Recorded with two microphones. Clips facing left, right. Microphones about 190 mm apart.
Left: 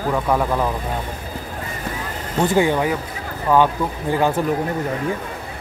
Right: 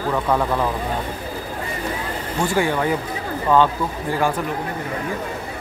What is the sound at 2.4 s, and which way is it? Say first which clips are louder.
Speech: left 3 dB; 20° left (ahead or behind).